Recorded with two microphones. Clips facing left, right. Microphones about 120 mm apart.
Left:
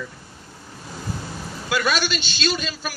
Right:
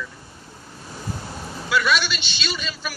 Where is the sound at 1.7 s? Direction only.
45° left (ahead or behind).